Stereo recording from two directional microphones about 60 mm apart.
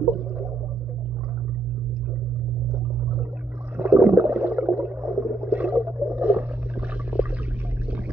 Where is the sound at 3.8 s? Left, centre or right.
Right.